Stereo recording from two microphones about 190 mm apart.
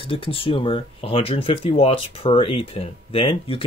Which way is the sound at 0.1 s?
30° left (ahead or behind).